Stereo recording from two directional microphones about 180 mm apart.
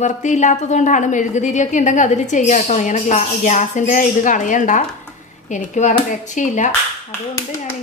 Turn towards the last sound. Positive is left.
turn(degrees=45)  # may be behind; listen again after turning